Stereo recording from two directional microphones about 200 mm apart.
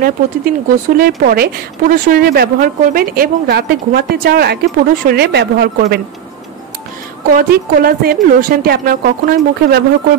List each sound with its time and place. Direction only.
0.0 s speech: 45° right (ahead or behind)
7.3 s speech: 50° right (ahead or behind)